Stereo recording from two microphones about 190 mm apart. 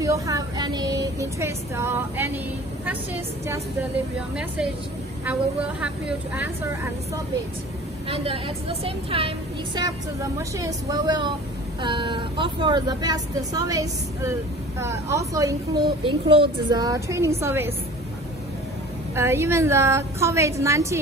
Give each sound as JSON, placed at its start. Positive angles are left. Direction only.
{"t": 0.0, "sound": "a woman's voice", "side_deg": -20}
{"t": 5.2, "sound": "a woman's voice", "side_deg": -5}
{"t": 8.1, "sound": "speech", "side_deg": -30}
{"t": 9.8, "sound": "a woman's voice", "side_deg": -20}
{"t": 19.1, "sound": "a woman's voice", "side_deg": -15}